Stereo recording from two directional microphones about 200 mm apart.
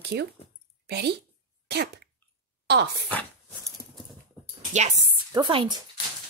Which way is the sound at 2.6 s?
55° right (ahead or behind).